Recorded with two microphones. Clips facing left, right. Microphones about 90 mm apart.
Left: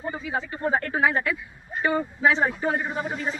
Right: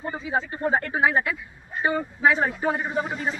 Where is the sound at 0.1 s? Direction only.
30° right (ahead or behind).